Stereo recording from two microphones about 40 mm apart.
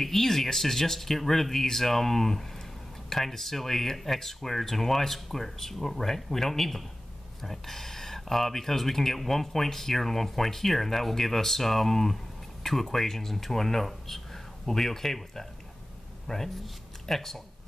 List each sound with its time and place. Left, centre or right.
0.0 s speech: centre